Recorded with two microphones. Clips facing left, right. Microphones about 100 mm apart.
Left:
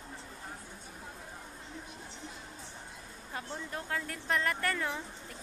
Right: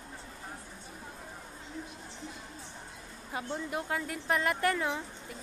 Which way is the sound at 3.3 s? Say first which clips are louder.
Right 5 dB; 10° right (ahead or behind).